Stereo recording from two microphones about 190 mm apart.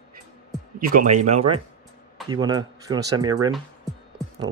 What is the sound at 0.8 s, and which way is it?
Speech, 45° right (ahead or behind).